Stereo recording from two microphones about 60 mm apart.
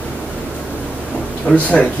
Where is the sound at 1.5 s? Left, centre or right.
Centre.